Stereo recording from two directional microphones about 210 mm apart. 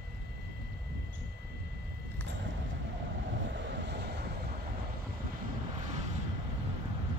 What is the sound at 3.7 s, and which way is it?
Vehicle, 55° right (ahead or behind).